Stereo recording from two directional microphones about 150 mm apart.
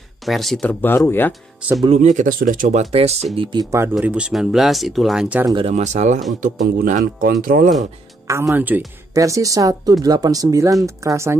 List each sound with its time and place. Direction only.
0.2 s speech: centre (ahead or behind)
1.9 s speech: 55° right (ahead or behind)
3.3 s speech: 35° right (ahead or behind)
3.9 s speech: 5° right (ahead or behind)
5.7 s speech: 50° right (ahead or behind)
6.4 s speech: 60° right (ahead or behind)
8.3 s speech: 20° right (ahead or behind)